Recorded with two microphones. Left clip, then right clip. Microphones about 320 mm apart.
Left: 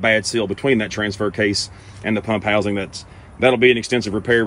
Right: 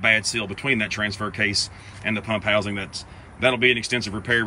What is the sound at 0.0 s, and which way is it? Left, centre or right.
Speech, centre.